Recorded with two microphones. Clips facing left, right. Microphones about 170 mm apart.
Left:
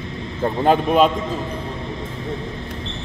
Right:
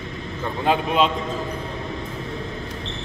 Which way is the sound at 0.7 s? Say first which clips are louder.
Left 4 dB; 50° left (ahead or behind).